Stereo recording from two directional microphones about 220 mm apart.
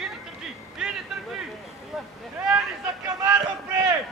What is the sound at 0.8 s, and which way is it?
Vehicle, 5° right (ahead or behind).